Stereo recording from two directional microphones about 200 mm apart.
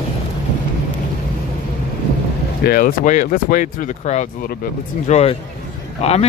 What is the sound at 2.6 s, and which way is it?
Speech, 45° left (ahead or behind).